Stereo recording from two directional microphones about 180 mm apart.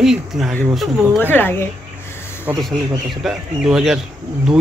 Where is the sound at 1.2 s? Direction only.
10° left (ahead or behind).